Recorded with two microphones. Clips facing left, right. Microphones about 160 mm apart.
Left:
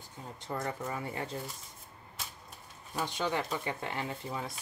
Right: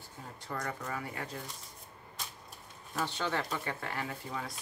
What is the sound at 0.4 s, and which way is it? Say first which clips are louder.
Speech: left 3 dB; 20° left (ahead or behind).